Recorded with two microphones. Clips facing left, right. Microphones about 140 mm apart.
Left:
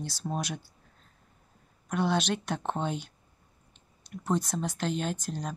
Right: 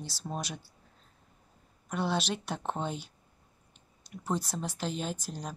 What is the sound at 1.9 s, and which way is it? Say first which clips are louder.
Speech: left 3 dB; 5° right (ahead or behind).